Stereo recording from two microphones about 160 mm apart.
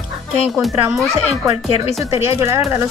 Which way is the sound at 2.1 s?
20° right (ahead or behind).